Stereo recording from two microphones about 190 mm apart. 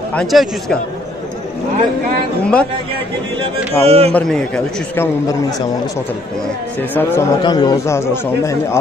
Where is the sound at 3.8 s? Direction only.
30° right (ahead or behind).